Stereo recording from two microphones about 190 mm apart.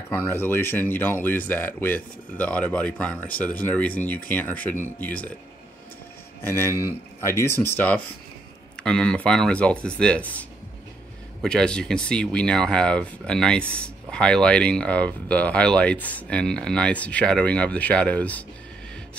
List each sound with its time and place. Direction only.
0.1 s speech: 10° left (ahead or behind)
6.4 s speech: 15° left (ahead or behind)
11.4 s speech: 5° left (ahead or behind)